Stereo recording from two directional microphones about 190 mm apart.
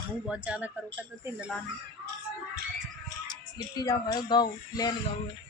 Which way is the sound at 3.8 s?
20° left (ahead or behind).